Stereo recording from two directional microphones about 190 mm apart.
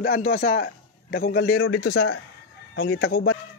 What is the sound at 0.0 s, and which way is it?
A man's voice, 50° left (ahead or behind).